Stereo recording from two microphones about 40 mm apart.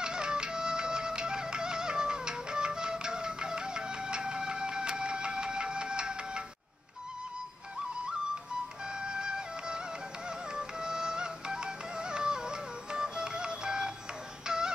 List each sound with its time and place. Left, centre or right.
0.0 s music: right
9.0 s music: right